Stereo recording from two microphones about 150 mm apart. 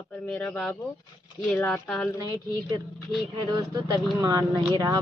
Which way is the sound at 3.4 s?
30° right (ahead or behind).